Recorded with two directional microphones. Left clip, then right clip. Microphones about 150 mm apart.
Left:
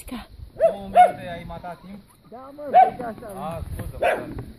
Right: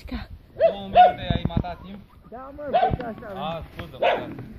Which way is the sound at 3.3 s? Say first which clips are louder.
Right 2 dB; 15° left (ahead or behind).